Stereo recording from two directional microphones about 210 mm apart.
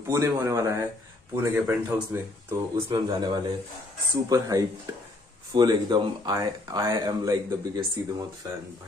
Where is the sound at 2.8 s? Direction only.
25° right (ahead or behind).